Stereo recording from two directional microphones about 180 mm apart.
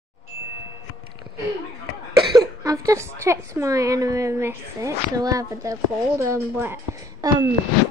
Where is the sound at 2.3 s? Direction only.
20° right (ahead or behind).